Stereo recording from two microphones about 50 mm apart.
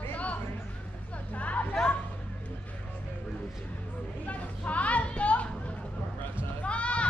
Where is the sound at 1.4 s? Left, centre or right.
Left.